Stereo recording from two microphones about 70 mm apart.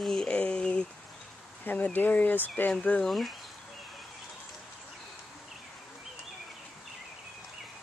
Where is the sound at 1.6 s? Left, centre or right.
Left.